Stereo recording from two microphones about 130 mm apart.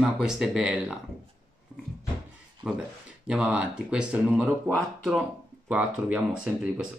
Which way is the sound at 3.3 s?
10° right (ahead or behind).